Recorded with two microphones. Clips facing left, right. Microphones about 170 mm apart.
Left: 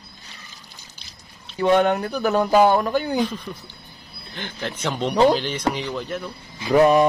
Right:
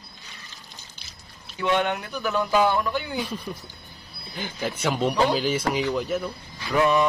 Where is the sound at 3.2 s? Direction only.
10° right (ahead or behind).